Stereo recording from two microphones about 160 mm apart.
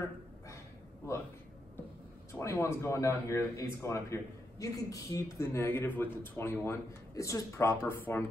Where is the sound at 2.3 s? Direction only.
15° left (ahead or behind).